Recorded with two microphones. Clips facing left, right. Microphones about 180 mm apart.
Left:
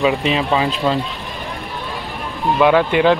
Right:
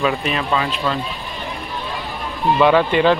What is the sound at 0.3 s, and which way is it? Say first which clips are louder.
Speech: left 3 dB; 20° left (ahead or behind).